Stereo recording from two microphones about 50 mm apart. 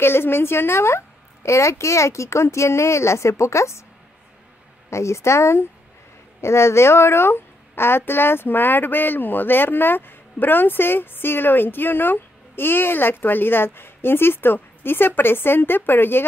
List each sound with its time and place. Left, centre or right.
0.0 s a woman's voice: left
4.8 s a woman's voice: left